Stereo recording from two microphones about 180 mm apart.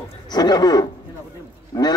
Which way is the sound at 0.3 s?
20° left (ahead or behind).